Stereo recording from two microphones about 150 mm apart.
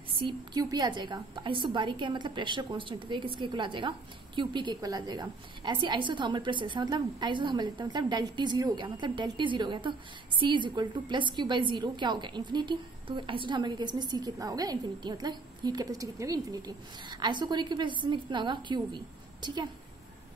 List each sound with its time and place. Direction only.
0.2 s a woman's voice: 30° right (ahead or behind)